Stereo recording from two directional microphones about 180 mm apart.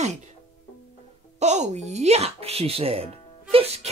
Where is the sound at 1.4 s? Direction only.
40° right (ahead or behind).